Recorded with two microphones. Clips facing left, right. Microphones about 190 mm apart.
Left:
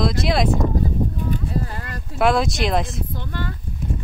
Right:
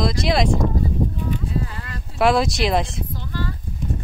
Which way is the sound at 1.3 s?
40° left (ahead or behind).